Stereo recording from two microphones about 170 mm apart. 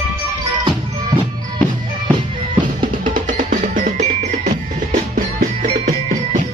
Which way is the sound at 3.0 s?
50° right (ahead or behind).